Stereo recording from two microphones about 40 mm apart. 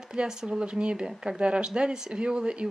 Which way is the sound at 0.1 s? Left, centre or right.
Centre.